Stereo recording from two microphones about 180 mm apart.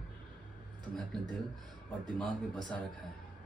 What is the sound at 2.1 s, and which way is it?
Speech, 5° left (ahead or behind).